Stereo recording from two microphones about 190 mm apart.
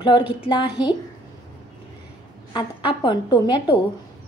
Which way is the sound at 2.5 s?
25° left (ahead or behind).